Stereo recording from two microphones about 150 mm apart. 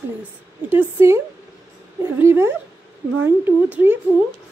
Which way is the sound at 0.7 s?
15° right (ahead or behind).